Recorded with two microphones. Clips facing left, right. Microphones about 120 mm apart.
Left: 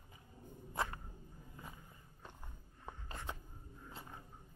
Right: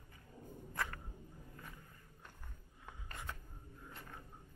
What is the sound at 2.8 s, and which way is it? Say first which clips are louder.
Writing: left 3 dB; 25° left (ahead or behind).